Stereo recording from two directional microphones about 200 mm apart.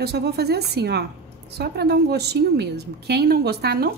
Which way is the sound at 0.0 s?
55° right (ahead or behind).